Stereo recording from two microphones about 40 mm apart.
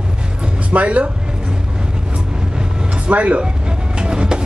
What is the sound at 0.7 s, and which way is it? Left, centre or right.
Speech, right.